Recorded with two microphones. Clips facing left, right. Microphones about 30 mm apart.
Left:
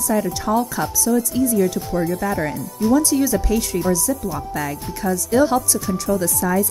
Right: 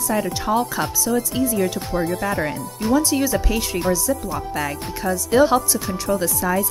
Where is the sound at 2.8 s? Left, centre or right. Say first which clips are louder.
Left 2 dB; right.